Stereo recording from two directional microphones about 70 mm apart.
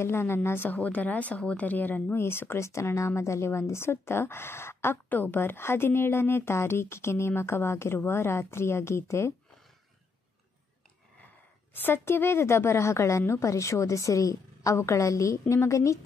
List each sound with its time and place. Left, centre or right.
0.0 s speech: left
11.7 s a woman's voice: left